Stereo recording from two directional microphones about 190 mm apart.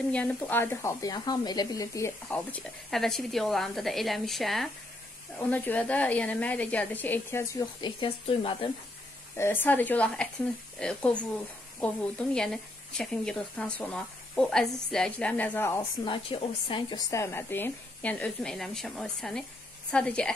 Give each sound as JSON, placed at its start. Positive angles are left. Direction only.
{"t": 0.1, "sound": "speech", "side_deg": 5}
{"t": 7.8, "sound": "speech", "side_deg": 30}
{"t": 9.4, "sound": "speech", "side_deg": 10}
{"t": 16.0, "sound": "speech", "side_deg": 30}